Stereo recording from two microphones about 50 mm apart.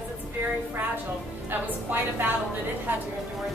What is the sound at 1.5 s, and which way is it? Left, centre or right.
Speech, right.